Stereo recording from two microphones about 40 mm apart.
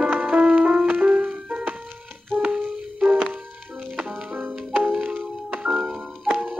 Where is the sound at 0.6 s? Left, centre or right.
Right.